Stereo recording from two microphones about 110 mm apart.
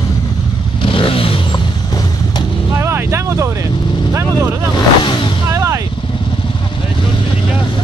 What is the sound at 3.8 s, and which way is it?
Vehicle, 45° left (ahead or behind).